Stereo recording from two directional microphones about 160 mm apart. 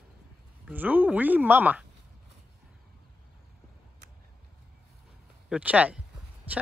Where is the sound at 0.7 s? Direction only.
10° right (ahead or behind).